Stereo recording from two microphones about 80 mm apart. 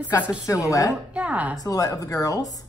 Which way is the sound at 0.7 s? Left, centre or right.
Left.